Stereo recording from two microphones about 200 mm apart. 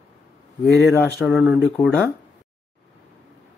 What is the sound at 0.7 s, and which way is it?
Speech, centre (ahead or behind).